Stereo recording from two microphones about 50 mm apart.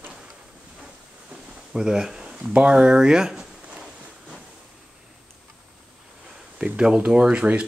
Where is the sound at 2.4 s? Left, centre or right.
Right.